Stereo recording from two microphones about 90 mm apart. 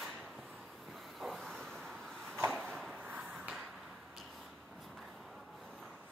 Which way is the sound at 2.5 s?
5° left (ahead or behind).